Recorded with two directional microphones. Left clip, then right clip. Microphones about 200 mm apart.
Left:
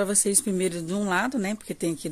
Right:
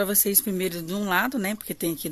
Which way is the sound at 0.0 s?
10° left (ahead or behind).